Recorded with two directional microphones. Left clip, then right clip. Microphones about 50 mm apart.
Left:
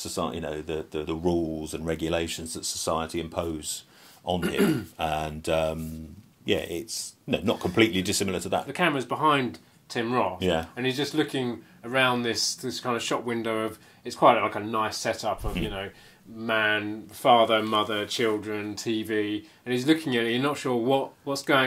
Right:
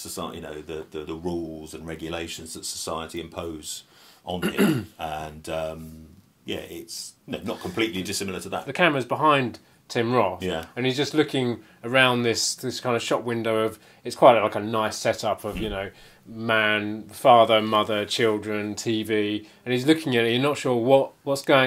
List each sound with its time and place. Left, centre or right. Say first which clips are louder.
0.0 s speech: left 3 dB; left
2.2 s speech: left 2 dB; left
4.4 s speech: right 3 dB; right
4.9 s speech: left 3 dB; left
8.6 s speech: right 4 dB; right
9.5 s speech: right 4 dB; right
10.4 s speech: left 3 dB; left
10.7 s speech: right 3 dB; right